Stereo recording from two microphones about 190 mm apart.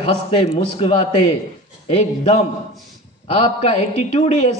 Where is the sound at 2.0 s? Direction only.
35° left (ahead or behind).